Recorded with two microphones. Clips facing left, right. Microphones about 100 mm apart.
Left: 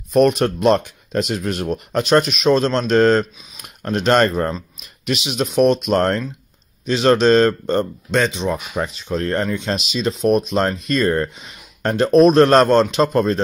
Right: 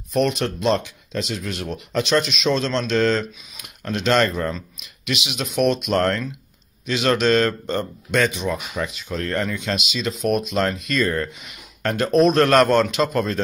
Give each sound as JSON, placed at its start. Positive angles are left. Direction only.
{"t": 0.1, "sound": "speech", "side_deg": 45}
{"t": 8.7, "sound": "speech", "side_deg": 35}